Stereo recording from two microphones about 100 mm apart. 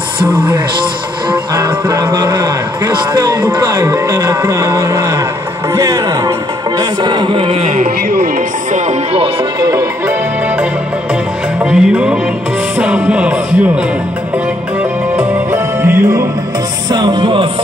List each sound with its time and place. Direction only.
1.5 s a man's voice: 40° right (ahead or behind); by 7.9 s 90° right
9.6 s speech: 35° right (ahead or behind)
11.6 s music: 10° right (ahead or behind)
15.1 s music: 25° right (ahead or behind)
16.9 s music: 55° right (ahead or behind)